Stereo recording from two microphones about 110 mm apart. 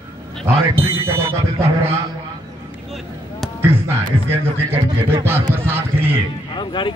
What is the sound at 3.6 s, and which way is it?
A man's voice, 20° right (ahead or behind).